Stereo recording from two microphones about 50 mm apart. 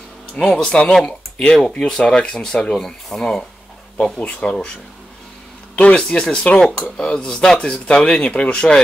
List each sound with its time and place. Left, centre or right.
0.5 s speech: centre
2.7 s speech: centre
5.8 s speech: left